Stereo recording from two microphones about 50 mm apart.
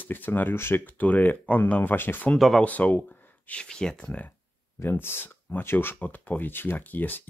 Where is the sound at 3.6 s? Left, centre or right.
Centre.